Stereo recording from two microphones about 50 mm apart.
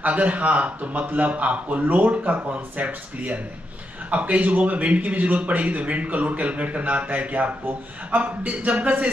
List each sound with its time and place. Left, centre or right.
0.0 s a man's voice: right